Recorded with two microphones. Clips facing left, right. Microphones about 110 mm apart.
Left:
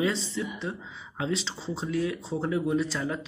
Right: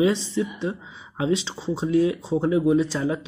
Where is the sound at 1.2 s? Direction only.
15° right (ahead or behind).